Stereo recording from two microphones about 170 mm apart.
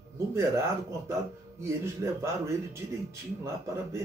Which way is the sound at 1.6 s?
15° right (ahead or behind).